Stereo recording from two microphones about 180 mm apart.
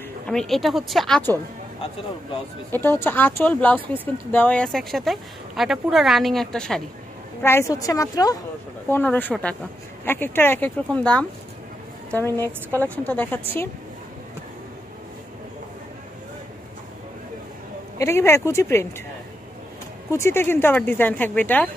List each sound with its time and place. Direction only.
0.3 s speech: centre (ahead or behind)
2.7 s speech: 10° left (ahead or behind)
7.4 s a woman's voice: 15° left (ahead or behind)
17.9 s speech: 15° left (ahead or behind)
20.1 s speech: 15° left (ahead or behind)